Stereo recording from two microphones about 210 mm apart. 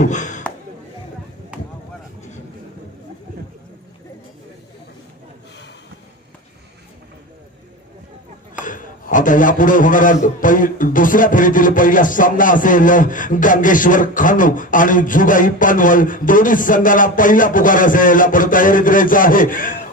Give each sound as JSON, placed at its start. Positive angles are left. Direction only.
{"t": 0.0, "sound": "speech", "side_deg": 35}
{"t": 8.5, "sound": "a man's voice", "side_deg": 40}